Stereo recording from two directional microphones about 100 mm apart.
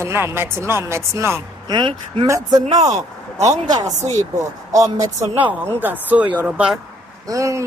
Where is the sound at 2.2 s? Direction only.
40° right (ahead or behind).